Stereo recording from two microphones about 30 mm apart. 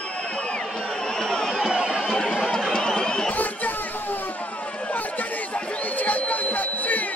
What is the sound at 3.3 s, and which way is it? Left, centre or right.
Chatter, left.